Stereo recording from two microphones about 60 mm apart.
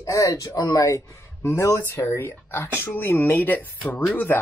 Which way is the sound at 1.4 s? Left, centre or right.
Left.